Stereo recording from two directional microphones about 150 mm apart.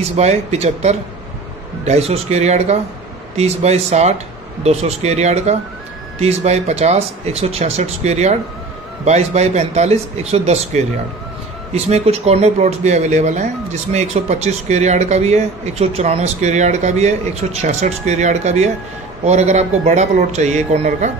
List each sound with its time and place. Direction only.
0.1 s speech: 45° right (ahead or behind)